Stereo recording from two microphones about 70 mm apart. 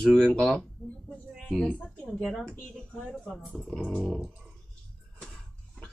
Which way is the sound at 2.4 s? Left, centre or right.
Centre.